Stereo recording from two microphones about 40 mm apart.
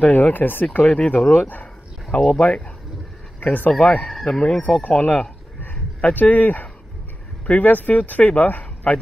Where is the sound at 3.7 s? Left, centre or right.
Left.